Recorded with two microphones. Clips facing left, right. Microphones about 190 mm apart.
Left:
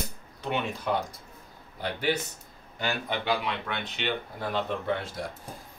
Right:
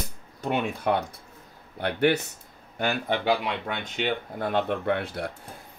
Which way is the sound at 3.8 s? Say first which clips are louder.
Right 3 dB; 50° right (ahead or behind).